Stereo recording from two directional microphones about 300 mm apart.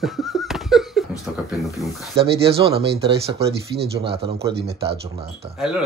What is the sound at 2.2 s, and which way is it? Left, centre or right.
Speech, centre.